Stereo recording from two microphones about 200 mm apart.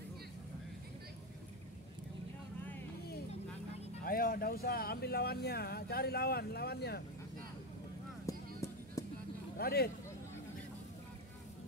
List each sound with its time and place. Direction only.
4.0 s speech: 45° left (ahead or behind)
8.3 s a sound: 15° left (ahead or behind)
9.6 s speech: 50° left (ahead or behind)